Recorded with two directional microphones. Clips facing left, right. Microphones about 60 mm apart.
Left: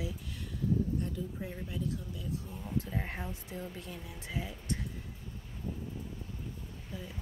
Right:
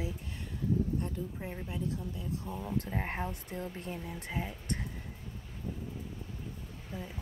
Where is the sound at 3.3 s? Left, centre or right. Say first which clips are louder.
Right 2 dB; right.